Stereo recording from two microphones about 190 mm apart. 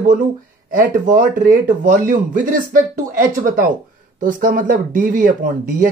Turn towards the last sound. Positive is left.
turn(degrees=-45)  # may be behind; listen again after turning